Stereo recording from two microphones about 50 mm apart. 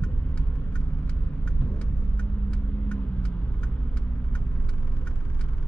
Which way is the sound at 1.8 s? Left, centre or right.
Left.